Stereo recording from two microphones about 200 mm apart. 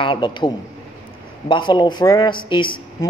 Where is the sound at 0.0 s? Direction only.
25° left (ahead or behind).